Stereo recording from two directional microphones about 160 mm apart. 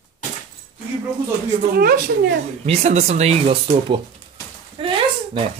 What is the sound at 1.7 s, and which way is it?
Speech, 70° right (ahead or behind).